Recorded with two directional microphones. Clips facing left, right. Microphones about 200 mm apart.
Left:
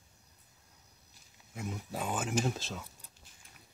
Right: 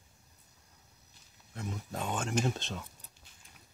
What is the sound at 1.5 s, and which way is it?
Speech, 5° left (ahead or behind).